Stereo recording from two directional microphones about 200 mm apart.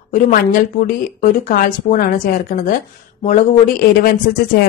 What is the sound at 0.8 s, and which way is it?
Speech, 45° left (ahead or behind).